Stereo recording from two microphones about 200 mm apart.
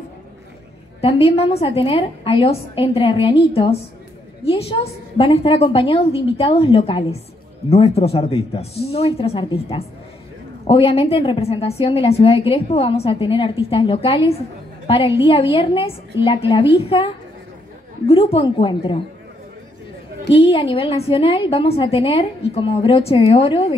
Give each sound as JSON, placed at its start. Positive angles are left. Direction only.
{"t": 1.0, "sound": "a woman's voice", "side_deg": 30}
{"t": 20.3, "sound": "a woman's voice", "side_deg": 30}